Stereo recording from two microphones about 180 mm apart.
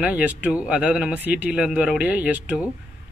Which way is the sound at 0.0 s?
10° right (ahead or behind).